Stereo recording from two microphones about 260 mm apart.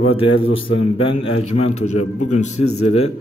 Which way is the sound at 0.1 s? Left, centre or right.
Left.